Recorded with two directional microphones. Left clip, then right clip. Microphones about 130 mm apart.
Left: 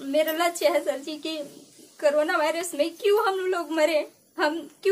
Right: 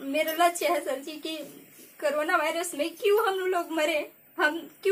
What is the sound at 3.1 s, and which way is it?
Speech, 40° left (ahead or behind).